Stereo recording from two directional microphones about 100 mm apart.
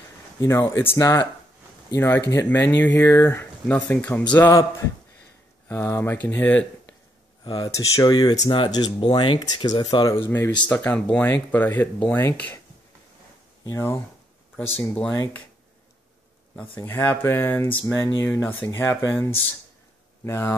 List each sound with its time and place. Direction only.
0.4 s speech: 30° left (ahead or behind)
4.5 s speech: 35° left (ahead or behind); by 6.7 s 15° left (ahead or behind)
7.4 s speech: 45° left (ahead or behind)
7.7 s speech: 35° left (ahead or behind)
8.1 s speech: 45° left (ahead or behind)
10.2 s speech: 25° left (ahead or behind)
10.7 s speech: 15° left (ahead or behind)
13.7 s speech: 30° left (ahead or behind)
14.7 s speech: 15° left (ahead or behind)
16.7 s speech: 20° left (ahead or behind)
20.2 s speech: 25° left (ahead or behind)